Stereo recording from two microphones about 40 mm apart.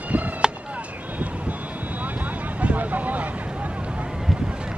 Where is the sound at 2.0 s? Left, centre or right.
Right.